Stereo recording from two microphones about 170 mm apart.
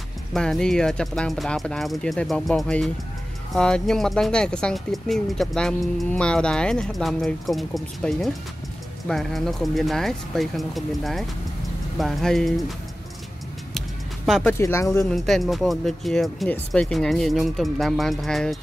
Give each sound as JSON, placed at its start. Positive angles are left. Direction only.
{"t": 0.3, "sound": "speech", "side_deg": 5}
{"t": 13.7, "sound": "music", "side_deg": 0}
{"t": 14.4, "sound": "speech", "side_deg": 15}
{"t": 15.0, "sound": "speech", "side_deg": 0}